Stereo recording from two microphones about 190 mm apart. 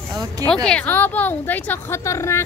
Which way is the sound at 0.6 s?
10° left (ahead or behind).